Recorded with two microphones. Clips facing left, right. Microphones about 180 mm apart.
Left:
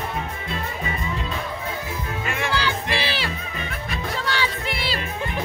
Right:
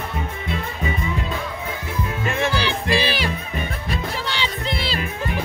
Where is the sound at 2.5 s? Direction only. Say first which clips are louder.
Right 3 dB; 15° right (ahead or behind).